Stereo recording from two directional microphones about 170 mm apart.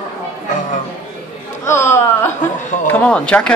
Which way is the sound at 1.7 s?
15° left (ahead or behind).